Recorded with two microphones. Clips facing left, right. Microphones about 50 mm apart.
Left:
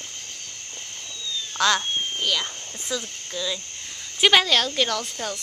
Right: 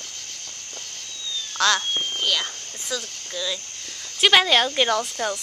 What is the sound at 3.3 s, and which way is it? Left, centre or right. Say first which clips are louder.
Speech: even; centre.